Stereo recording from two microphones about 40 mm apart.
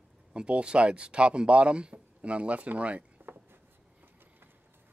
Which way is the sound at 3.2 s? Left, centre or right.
Right.